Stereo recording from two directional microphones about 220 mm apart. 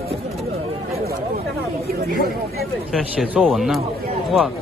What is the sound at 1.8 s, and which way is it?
Speech, 40° right (ahead or behind).